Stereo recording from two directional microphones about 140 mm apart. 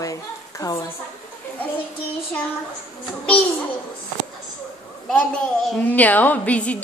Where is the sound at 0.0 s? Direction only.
25° left (ahead or behind).